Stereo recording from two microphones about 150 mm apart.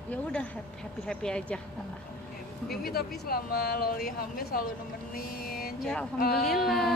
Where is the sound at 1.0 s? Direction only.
5° left (ahead or behind).